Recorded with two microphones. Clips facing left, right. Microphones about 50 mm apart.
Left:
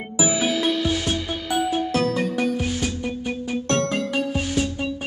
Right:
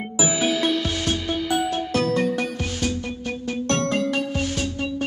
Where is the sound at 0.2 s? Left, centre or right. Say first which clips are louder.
Even; centre.